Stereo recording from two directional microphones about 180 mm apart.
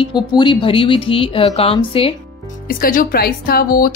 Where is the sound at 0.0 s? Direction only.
25° left (ahead or behind).